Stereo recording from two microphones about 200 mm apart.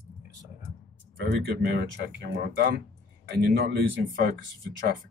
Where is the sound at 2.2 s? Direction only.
50° right (ahead or behind).